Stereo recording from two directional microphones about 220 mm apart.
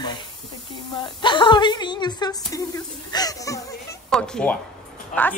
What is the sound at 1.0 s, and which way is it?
A woman's voice, 20° left (ahead or behind).